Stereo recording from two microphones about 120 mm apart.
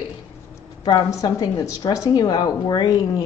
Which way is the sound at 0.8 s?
35° left (ahead or behind).